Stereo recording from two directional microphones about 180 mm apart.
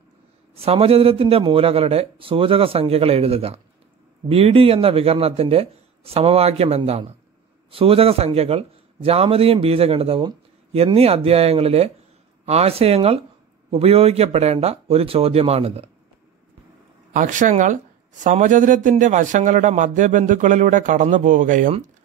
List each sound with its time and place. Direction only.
0.6 s a man's voice: 35° right (ahead or behind)
17.1 s a man's voice: 45° right (ahead or behind)